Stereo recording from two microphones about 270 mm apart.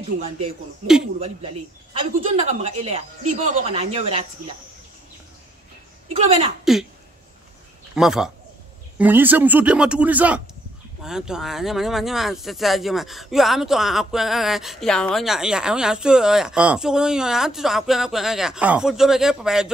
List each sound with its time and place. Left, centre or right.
2.0 s speech: right
6.1 s speech: right
6.6 s speech: centre
7.9 s speech: centre